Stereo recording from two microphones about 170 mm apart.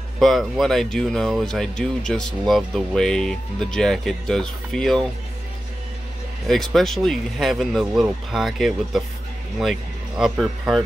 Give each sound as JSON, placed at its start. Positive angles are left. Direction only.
{"t": 0.2, "sound": "speech", "side_deg": 0}
{"t": 6.4, "sound": "speech", "side_deg": 0}